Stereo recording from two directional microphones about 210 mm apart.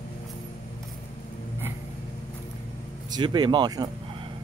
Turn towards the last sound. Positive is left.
turn(degrees=-20)  # may be behind; listen again after turning